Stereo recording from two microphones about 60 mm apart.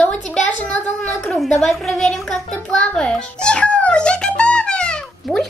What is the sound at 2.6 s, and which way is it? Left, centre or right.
Music, centre.